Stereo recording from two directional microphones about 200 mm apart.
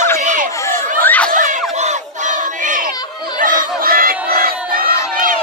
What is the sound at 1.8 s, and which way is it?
Crowd, 35° right (ahead or behind).